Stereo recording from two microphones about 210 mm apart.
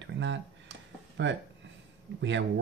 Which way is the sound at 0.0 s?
60° right (ahead or behind).